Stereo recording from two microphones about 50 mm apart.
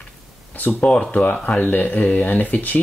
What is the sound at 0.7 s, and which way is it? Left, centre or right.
Speech, left.